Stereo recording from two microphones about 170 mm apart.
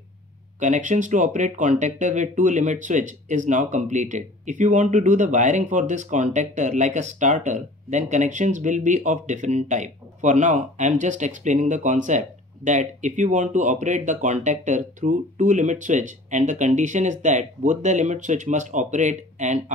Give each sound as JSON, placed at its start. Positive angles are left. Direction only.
{"t": 0.6, "sound": "speech", "side_deg": -45}